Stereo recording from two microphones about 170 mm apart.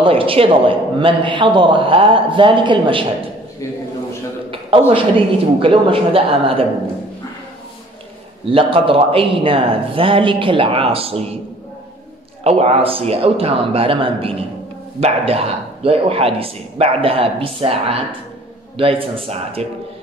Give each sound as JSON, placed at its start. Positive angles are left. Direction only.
{"t": 0.0, "sound": "a man's voice", "side_deg": -30}
{"t": 4.5, "sound": "a sound", "side_deg": -30}
{"t": 5.6, "sound": "a man's voice", "side_deg": -30}
{"t": 8.5, "sound": "a man's voice", "side_deg": -30}
{"t": 12.4, "sound": "a man's voice", "side_deg": -40}